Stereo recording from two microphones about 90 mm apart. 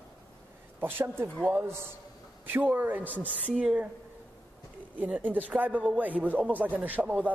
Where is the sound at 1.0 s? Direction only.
30° right (ahead or behind); by 3.9 s 10° right (ahead or behind).